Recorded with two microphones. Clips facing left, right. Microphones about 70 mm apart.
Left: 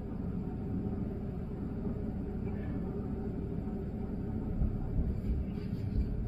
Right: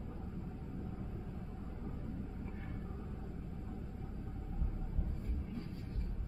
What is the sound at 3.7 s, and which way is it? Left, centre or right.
Vehicle, left.